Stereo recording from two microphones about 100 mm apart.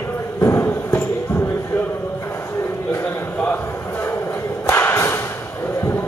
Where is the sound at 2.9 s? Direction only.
15° left (ahead or behind).